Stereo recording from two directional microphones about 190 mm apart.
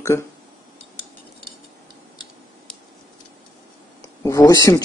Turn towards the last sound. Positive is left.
turn(degrees=20)  # may be behind; listen again after turning